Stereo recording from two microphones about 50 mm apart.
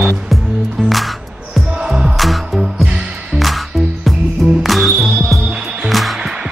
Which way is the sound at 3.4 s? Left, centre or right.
Centre.